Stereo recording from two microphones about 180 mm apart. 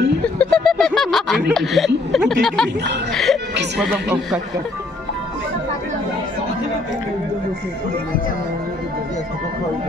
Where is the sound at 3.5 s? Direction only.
70° right (ahead or behind).